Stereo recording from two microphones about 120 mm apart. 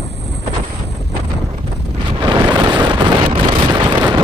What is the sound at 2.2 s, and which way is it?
Vehicle, 40° right (ahead or behind).